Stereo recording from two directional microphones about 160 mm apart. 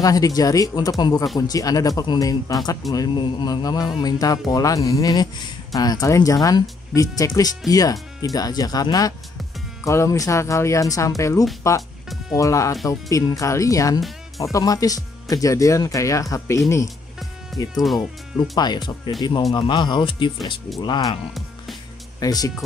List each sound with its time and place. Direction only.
0.0 s speech: 25° left (ahead or behind)
17.5 s speech: centre (ahead or behind)
18.6 s speech: 25° left (ahead or behind)
22.2 s speech: 25° left (ahead or behind)